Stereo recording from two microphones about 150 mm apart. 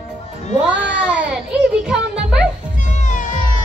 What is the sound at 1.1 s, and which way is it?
A child's voice, 5° right (ahead or behind).